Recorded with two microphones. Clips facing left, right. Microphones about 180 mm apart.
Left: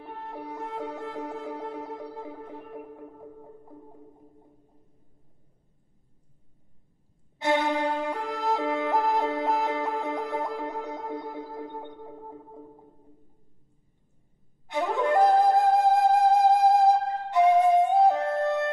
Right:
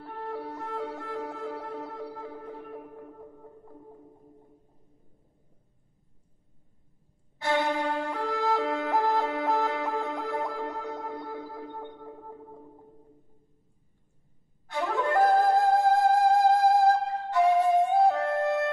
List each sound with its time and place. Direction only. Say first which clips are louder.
0.0 s music: right 3 dB; 20° left (ahead or behind)
7.3 s music: left 2 dB; 20° left (ahead or behind)
8.5 s music: left 1 dB; centre (ahead or behind)
8.9 s music: right 1 dB; 20° left (ahead or behind)
14.7 s flute: left 3 dB; 20° left (ahead or behind)
15.7 s music: left 1 dB; 20° left (ahead or behind)